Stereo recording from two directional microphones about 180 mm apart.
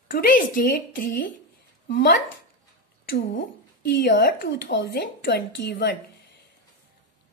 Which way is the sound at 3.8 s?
65° left (ahead or behind).